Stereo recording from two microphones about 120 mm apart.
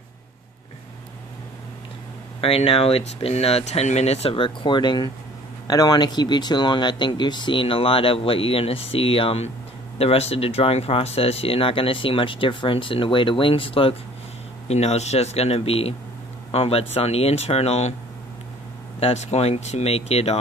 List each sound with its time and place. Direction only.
2.4 s speech: 55° left (ahead or behind)
14.7 s speech: 65° left (ahead or behind)
18.9 s speech: 65° left (ahead or behind)